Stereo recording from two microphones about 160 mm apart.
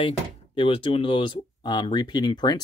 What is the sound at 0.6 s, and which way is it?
Speech, 35° left (ahead or behind).